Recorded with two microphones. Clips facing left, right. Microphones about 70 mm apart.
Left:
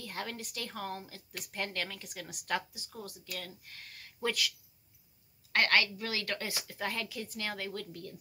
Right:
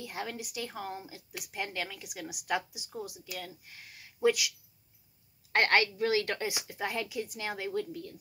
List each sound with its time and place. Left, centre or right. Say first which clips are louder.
0.0 s speech: right 2 dB; centre
5.5 s a woman's voice: right 2 dB; right